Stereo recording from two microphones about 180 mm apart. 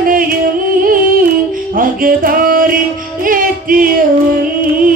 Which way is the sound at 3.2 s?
50° right (ahead or behind).